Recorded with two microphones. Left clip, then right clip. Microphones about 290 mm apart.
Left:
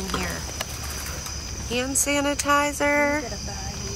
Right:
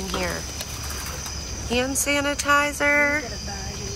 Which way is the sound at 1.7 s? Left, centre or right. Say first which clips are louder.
Right 2 dB; centre.